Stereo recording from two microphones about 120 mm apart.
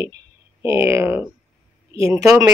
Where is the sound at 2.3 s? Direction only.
25° right (ahead or behind).